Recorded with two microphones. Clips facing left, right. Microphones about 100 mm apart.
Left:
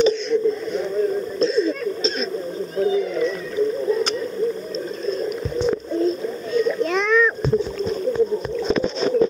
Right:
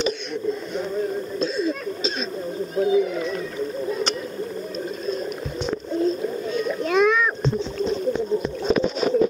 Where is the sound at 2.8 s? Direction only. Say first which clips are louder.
Even; 15° right (ahead or behind).